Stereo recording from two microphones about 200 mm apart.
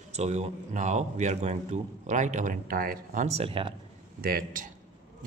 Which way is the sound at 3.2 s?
30° right (ahead or behind).